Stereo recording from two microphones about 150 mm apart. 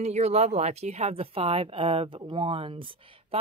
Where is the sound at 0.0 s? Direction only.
45° right (ahead or behind).